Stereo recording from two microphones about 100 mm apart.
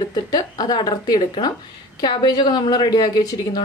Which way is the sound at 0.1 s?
40° left (ahead or behind).